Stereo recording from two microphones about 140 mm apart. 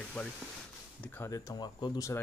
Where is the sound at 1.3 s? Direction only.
25° left (ahead or behind).